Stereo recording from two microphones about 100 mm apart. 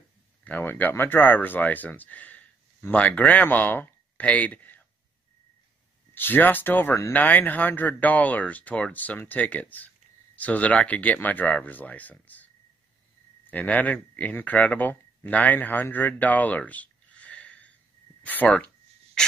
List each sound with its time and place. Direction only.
0.4 s speech: 15° left (ahead or behind)
6.1 s speech: 20° left (ahead or behind)
13.5 s speech: 15° left (ahead or behind)